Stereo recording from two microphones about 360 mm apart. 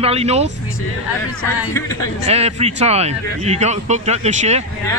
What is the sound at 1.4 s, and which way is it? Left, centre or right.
Speech, centre.